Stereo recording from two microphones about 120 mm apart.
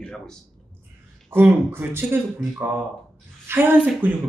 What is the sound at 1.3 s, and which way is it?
Speech, 20° right (ahead or behind).